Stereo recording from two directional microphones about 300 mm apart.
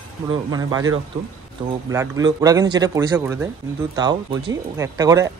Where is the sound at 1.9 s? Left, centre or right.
Centre.